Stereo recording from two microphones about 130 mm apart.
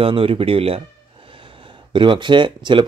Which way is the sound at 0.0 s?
45° right (ahead or behind).